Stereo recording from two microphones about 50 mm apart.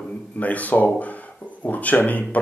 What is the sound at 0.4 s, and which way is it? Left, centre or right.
Speech, left.